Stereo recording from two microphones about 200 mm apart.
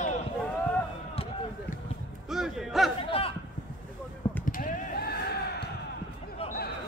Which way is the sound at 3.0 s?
25° left (ahead or behind).